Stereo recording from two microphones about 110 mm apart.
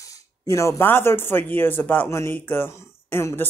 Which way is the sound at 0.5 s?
25° left (ahead or behind).